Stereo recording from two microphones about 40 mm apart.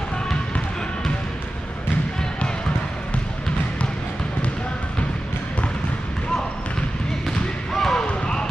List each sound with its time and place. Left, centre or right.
7.2 s basketball bounce: centre
8.1 s basketball bounce: centre